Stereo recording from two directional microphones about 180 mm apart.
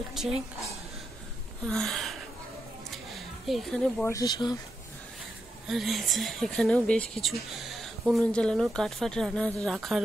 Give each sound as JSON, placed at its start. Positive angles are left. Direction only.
{"t": 0.1, "sound": "a woman's voice", "side_deg": 0}
{"t": 1.7, "sound": "a sound", "side_deg": 0}
{"t": 3.2, "sound": "a woman's voice", "side_deg": 0}
{"t": 4.1, "sound": "speech", "side_deg": 20}
{"t": 5.7, "sound": "a woman's voice", "side_deg": 0}